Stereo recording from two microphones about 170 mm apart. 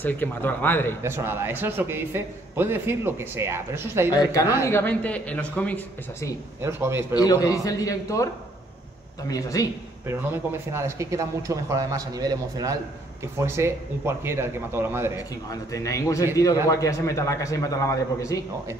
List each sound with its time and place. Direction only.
0.0 s a man's voice: 10° left (ahead or behind)
1.0 s a man's voice: 15° right (ahead or behind)
4.1 s a man's voice: 20° left (ahead or behind)
6.6 s a man's voice: 15° right (ahead or behind)
7.2 s a man's voice: 20° left (ahead or behind)
9.3 s a man's voice: 20° left (ahead or behind)
10.0 s a man's voice: 15° right (ahead or behind)
15.5 s a man's voice: 20° left (ahead or behind)